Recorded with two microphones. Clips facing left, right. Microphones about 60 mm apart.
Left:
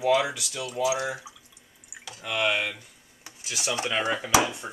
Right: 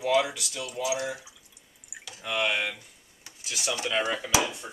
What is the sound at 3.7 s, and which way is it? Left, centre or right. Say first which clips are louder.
Speech: left 1 dB; left.